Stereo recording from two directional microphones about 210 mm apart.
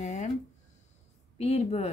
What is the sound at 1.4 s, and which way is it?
Speech, 30° left (ahead or behind).